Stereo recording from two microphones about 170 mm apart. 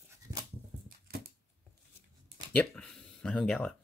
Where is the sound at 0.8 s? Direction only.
65° right (ahead or behind).